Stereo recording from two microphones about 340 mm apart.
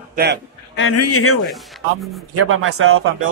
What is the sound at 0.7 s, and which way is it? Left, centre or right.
Speech, left.